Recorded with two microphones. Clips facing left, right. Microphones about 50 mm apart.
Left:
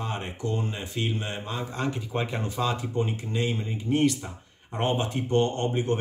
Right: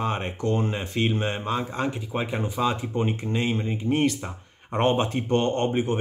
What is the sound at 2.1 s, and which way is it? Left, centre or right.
Speech, centre.